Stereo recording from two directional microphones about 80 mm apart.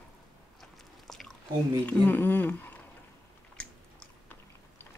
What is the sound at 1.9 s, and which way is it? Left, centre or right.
Speech, left.